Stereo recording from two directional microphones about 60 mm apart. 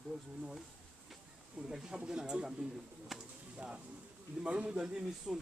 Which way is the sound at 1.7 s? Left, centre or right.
Centre.